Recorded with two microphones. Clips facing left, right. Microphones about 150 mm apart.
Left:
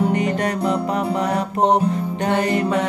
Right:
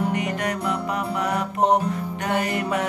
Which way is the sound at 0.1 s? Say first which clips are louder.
Left 5 dB; 30° left (ahead or behind).